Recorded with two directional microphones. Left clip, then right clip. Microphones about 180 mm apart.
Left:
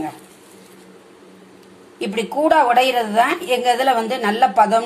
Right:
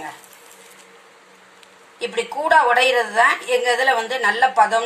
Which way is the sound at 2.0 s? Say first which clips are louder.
Left 3 dB; 5° left (ahead or behind).